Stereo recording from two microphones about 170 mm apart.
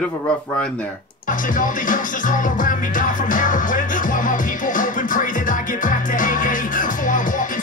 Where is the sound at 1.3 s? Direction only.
50° left (ahead or behind).